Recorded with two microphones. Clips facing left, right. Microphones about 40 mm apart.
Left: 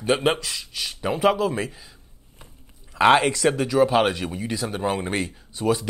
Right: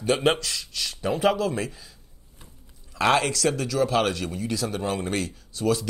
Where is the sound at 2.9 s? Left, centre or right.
Left.